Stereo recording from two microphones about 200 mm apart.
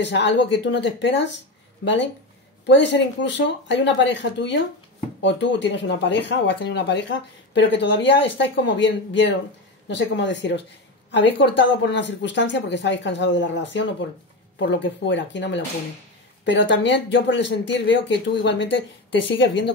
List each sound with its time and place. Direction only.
0.1 s speech: 65° left (ahead or behind)
2.6 s speech: 60° left (ahead or behind)